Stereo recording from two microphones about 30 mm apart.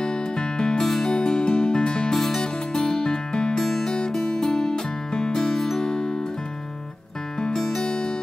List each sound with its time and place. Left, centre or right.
0.0 s music: left
2.1 s music: centre
2.4 s music: left
3.6 s music: centre
7.5 s music: centre
7.8 s music: left